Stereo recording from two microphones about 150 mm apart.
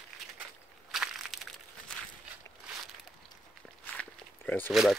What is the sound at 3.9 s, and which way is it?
Walk, 10° left (ahead or behind).